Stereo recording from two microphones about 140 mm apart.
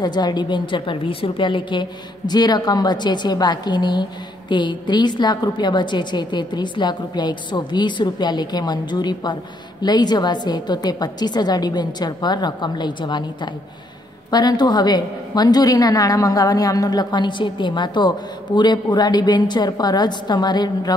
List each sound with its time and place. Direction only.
0.0 s a woman's voice: 30° left (ahead or behind)